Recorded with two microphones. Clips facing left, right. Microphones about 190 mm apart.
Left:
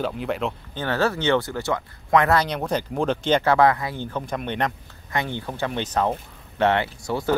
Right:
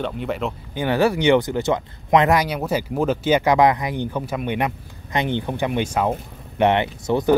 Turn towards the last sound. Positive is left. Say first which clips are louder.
# right 6 dB
turn(degrees=-20)  # may be behind; listen again after turning